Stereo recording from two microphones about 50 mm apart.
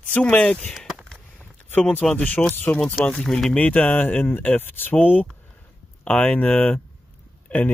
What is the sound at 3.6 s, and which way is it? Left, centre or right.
Speech, left.